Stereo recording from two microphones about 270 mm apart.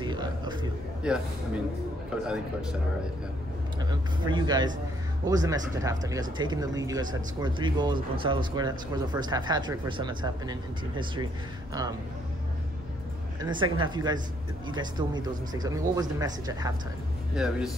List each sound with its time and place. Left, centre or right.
0.0 s music: centre
1.0 s a man's voice: centre
3.9 s speech: centre
13.4 s speech: centre
17.4 s speech: centre